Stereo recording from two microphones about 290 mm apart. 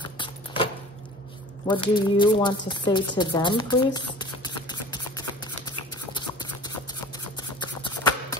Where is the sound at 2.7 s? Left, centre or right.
Centre.